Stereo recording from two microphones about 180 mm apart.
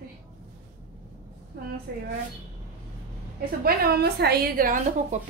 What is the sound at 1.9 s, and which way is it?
Speech, 65° right (ahead or behind).